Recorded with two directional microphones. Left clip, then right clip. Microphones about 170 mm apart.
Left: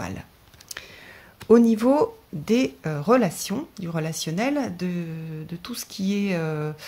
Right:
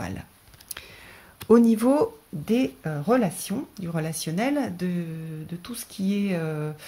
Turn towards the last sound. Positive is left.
turn(degrees=15)  # may be behind; listen again after turning